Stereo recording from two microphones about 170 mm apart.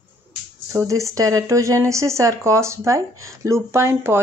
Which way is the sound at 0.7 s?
20° right (ahead or behind).